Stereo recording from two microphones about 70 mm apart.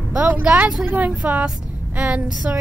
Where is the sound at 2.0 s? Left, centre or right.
Centre.